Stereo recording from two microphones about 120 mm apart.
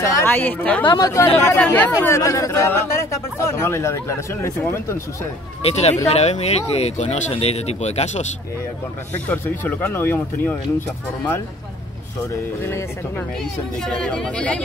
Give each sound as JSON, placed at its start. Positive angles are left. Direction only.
{"t": 0.0, "sound": "a sound", "side_deg": 25}
{"t": 0.3, "sound": "speech", "side_deg": 15}
{"t": 0.8, "sound": "speech", "side_deg": 30}
{"t": 2.0, "sound": "speech", "side_deg": 25}
{"t": 5.6, "sound": "speech", "side_deg": 60}
{"t": 9.1, "sound": "speech", "side_deg": 15}
{"t": 13.4, "sound": "speech", "side_deg": 5}